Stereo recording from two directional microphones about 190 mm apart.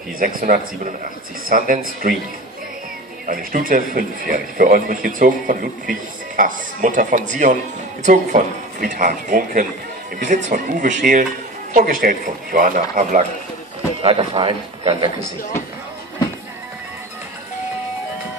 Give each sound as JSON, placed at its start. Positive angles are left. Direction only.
{"t": 0.2, "sound": "a man's voice", "side_deg": -50}
{"t": 3.3, "sound": "a man's voice", "side_deg": -45}
{"t": 14.0, "sound": "a man's voice", "side_deg": -25}